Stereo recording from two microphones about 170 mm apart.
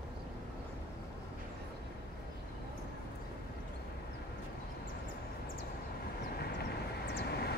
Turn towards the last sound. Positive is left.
turn(degrees=70)  # may be behind; listen again after turning